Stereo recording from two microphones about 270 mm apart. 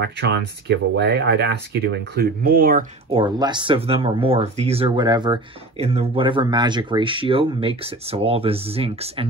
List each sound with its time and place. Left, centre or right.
0.0 s speech: right
3.1 s speech: centre